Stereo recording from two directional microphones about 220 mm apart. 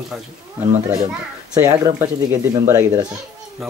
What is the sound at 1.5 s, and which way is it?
Speech, 15° right (ahead or behind).